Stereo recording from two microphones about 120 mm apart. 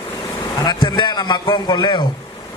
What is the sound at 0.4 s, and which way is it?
Speech, 40° left (ahead or behind).